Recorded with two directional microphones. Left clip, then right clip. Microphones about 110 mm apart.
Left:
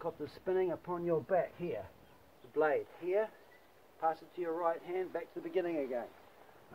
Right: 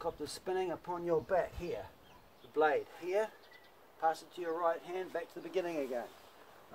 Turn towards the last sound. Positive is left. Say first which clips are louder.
# left 1 dB
turn(degrees=-20)  # may be behind; listen again after turning